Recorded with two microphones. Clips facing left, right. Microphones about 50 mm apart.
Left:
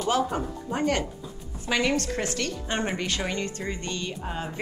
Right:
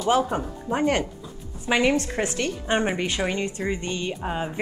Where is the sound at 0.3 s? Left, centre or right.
Right.